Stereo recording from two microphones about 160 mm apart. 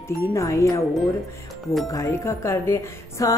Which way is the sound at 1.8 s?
20° left (ahead or behind).